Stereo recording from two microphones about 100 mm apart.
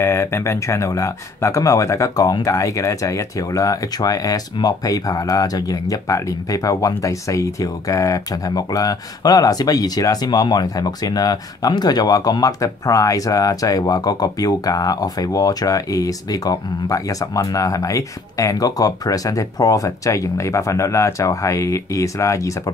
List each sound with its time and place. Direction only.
0.0 s speech: 25° left (ahead or behind)